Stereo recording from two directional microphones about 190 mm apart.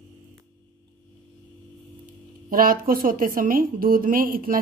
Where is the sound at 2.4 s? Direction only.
45° right (ahead or behind).